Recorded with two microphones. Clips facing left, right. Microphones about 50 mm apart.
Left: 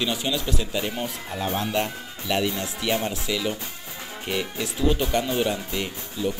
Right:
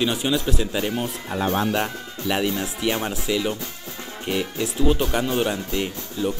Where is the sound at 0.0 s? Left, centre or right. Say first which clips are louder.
Right 4 dB; centre.